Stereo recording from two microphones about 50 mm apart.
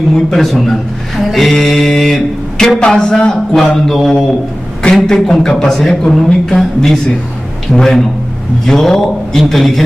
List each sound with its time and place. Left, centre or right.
0.1 s a man's voice: centre
3.5 s a man's voice: centre